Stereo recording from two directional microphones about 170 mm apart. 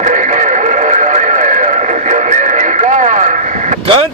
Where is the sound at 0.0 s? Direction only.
45° right (ahead or behind).